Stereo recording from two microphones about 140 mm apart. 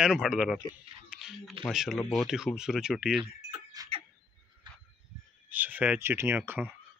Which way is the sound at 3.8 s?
25° right (ahead or behind).